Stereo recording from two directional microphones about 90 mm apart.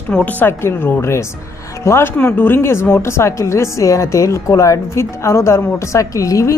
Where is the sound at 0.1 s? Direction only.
15° left (ahead or behind).